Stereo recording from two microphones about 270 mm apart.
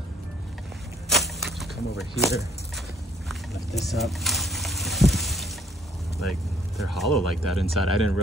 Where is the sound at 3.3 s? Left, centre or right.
Centre.